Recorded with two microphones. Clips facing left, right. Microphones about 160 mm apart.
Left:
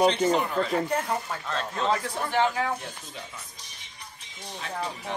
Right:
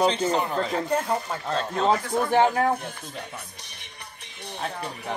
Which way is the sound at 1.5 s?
35° right (ahead or behind).